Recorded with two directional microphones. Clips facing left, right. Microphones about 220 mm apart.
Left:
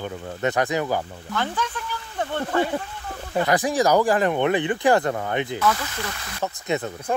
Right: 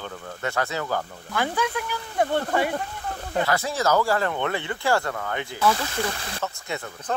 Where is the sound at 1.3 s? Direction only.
10° right (ahead or behind).